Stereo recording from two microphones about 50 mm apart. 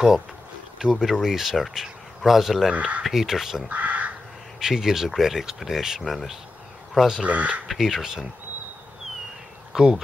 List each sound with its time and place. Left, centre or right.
0.7 s speech: centre
2.7 s speech: right
3.0 s speech: centre
3.6 s crow: right
4.6 s speech: centre
7.2 s speech: right
7.6 s speech: centre
9.7 s bee: centre